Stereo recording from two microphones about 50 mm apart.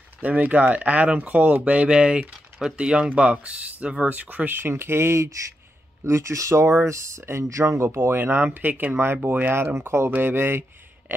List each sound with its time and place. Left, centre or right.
0.2 s speech: right
4.5 s speech: right
8.5 s speech: right
8.9 s speech: right
9.8 s speech: right
10.1 s speech: right